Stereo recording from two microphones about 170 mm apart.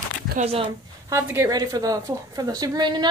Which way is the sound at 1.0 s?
15° right (ahead or behind).